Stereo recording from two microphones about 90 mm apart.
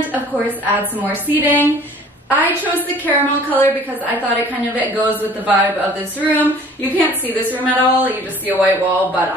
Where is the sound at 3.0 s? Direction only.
20° left (ahead or behind).